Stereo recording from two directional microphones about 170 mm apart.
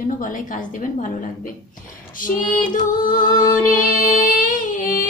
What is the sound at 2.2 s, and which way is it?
Music, 50° left (ahead or behind).